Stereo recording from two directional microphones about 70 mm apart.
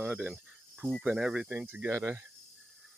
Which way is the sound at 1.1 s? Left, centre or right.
Centre.